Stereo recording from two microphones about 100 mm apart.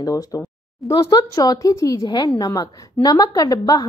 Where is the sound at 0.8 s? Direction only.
35° left (ahead or behind).